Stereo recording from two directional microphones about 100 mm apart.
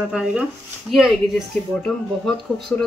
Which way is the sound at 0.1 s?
10° right (ahead or behind).